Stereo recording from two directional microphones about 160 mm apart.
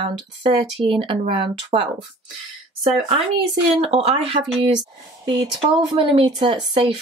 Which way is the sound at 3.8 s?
40° right (ahead or behind).